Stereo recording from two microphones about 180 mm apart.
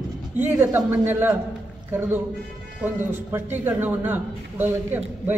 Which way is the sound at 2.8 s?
10° right (ahead or behind).